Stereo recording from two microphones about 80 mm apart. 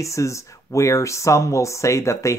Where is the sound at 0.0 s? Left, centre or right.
Left.